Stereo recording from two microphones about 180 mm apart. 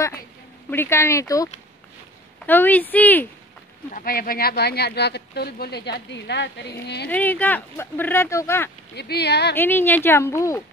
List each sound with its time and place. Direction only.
0.7 s speech: 15° left (ahead or behind)
3.9 s speech: 55° left (ahead or behind)
7.1 s speech: 10° left (ahead or behind)
8.9 s speech: 65° left (ahead or behind)
9.6 s speech: 10° left (ahead or behind)